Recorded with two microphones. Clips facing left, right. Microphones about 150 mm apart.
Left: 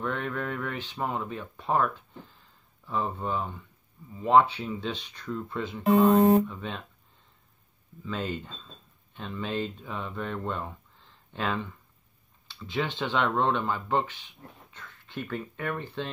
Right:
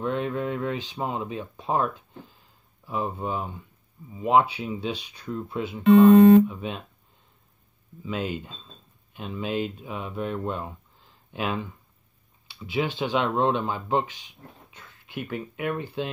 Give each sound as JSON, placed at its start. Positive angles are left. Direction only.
{"t": 0.0, "sound": "speech", "side_deg": -20}
{"t": 8.0, "sound": "speech", "side_deg": -15}